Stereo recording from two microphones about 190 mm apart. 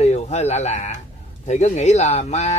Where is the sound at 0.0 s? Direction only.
35° left (ahead or behind).